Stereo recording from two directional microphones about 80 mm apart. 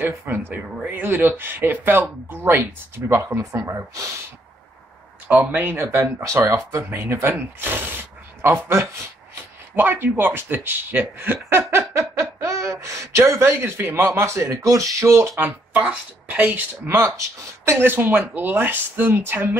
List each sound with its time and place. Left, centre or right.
0.0 s speech: right
0.7 s speech: centre
0.9 s speech: right
5.3 s speech: right
12.2 s speech: right
15.4 s speech: centre